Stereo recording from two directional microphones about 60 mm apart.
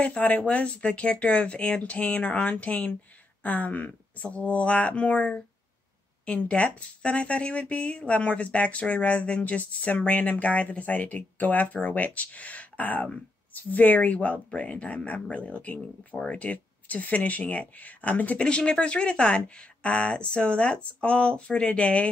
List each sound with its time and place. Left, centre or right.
0.0 s speech: left